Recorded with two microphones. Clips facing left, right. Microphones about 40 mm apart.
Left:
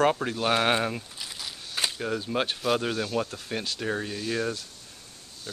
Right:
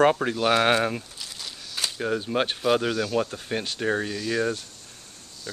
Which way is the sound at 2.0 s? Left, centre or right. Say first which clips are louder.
Right 6 dB; centre.